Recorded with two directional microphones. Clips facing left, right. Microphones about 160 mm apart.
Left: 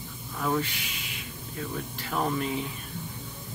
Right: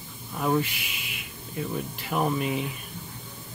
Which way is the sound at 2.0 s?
15° right (ahead or behind).